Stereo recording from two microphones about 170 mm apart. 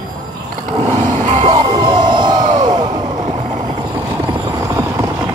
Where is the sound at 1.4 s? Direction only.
25° right (ahead or behind).